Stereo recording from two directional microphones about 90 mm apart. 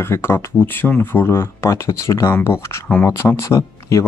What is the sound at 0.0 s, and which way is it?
Speech, 30° left (ahead or behind).